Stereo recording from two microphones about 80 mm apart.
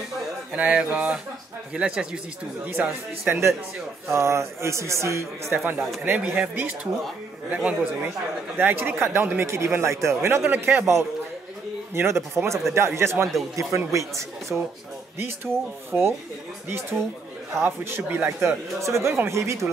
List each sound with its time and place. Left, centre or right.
0.6 s music: centre
2.6 s a man's voice: right
6.0 s a man's voice: right
7.4 s music: centre
8.5 s a man's voice: right
11.9 s a man's voice: right
14.5 s music: centre
15.9 s a man's voice: right
17.6 s a man's voice: right